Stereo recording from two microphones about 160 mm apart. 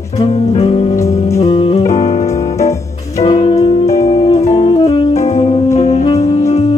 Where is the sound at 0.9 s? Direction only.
20° left (ahead or behind).